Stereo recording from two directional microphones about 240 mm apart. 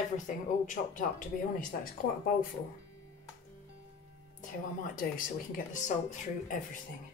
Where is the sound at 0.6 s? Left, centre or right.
Left.